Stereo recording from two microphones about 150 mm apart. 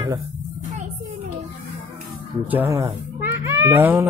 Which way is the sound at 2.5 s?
15° right (ahead or behind).